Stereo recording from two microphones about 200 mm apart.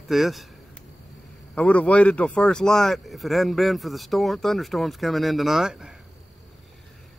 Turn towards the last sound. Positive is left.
turn(degrees=-5)  # may be behind; listen again after turning